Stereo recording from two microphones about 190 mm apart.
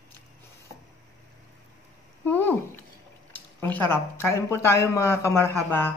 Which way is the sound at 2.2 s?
10° left (ahead or behind).